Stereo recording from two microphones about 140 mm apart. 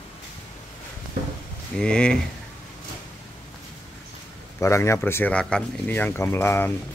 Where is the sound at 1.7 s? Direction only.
5° left (ahead or behind).